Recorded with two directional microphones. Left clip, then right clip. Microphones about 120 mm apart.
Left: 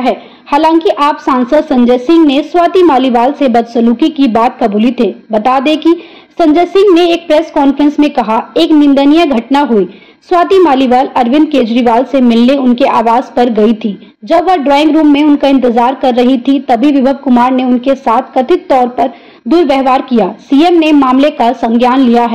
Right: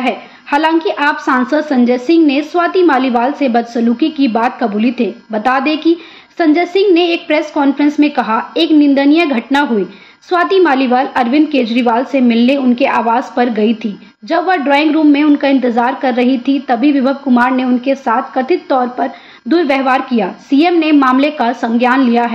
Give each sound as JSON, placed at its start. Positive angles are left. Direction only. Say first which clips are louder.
{"t": 0.0, "sound": "a woman's voice", "louder": "left 4 dB", "side_deg": 25}